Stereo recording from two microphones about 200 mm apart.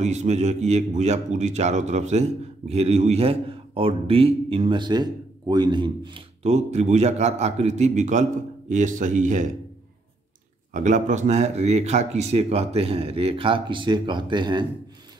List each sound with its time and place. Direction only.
0.0 s a man's voice: 35° right (ahead or behind)
10.7 s a man's voice: 35° right (ahead or behind)